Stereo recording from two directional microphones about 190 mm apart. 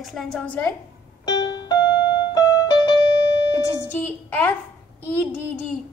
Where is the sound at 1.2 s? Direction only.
20° left (ahead or behind).